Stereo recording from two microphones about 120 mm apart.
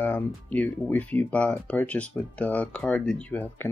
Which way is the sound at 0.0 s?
15° left (ahead or behind).